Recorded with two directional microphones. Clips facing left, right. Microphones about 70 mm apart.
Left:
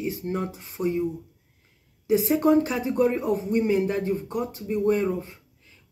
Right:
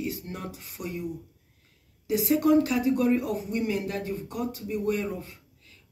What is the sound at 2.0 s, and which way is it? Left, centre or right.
Speech, left.